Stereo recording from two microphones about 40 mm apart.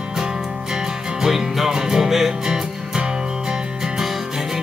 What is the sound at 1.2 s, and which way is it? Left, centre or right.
Music, centre.